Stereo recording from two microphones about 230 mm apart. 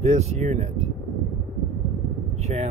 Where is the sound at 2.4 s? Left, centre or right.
Right.